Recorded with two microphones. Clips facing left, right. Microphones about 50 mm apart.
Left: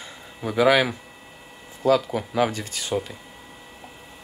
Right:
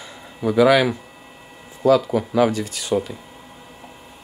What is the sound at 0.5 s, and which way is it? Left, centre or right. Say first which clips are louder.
Speech: right 3 dB; left.